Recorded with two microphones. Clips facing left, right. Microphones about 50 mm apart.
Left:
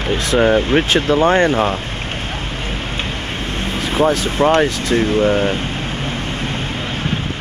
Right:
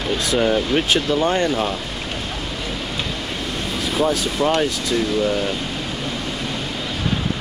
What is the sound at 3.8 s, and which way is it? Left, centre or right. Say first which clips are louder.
Speech: left 4 dB; left.